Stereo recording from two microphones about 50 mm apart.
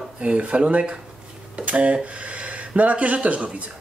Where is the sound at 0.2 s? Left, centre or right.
Right.